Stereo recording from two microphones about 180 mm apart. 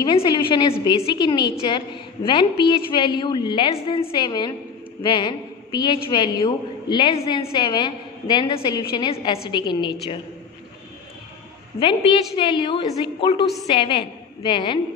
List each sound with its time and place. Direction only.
0.0 s a woman's voice: 25° left (ahead or behind)
11.8 s a woman's voice: 30° left (ahead or behind)